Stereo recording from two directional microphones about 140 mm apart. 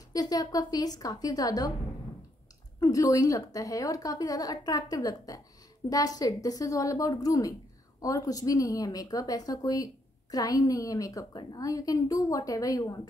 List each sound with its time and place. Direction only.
0.1 s a woman's voice: 25° left (ahead or behind)
2.8 s a woman's voice: 25° left (ahead or behind)